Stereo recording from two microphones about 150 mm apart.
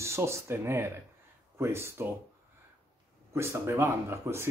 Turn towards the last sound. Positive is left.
turn(degrees=-20)  # may be behind; listen again after turning